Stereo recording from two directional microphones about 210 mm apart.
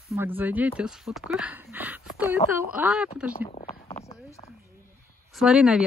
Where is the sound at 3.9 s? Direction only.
15° left (ahead or behind).